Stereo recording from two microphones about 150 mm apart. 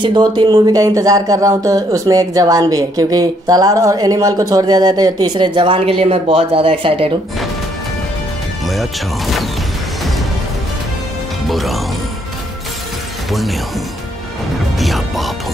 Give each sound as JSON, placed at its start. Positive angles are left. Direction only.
{"t": 0.0, "sound": "speech", "side_deg": -30}
{"t": 8.6, "sound": "speech", "side_deg": 0}
{"t": 11.4, "sound": "speech", "side_deg": 0}
{"t": 13.3, "sound": "speech", "side_deg": 0}
{"t": 14.8, "sound": "music", "side_deg": 0}